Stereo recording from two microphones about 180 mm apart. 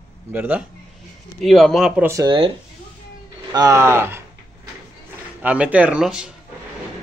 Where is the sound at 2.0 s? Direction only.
15° right (ahead or behind).